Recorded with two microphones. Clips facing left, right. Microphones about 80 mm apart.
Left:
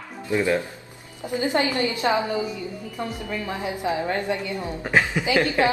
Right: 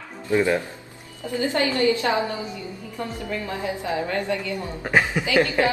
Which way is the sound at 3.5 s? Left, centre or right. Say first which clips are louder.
Left 2 dB; left.